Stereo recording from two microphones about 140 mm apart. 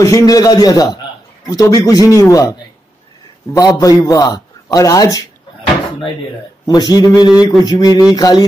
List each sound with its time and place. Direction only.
0.0 s a man's voice: 25° left (ahead or behind)
3.5 s a man's voice: 25° left (ahead or behind)
6.6 s a man's voice: 30° left (ahead or behind)